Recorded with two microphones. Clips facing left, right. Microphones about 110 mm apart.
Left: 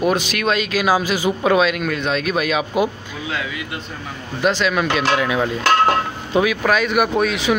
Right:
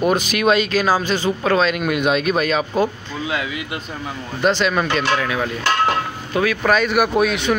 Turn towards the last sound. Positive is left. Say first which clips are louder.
# right 1 dB
turn(degrees=0)  # may be behind; listen again after turning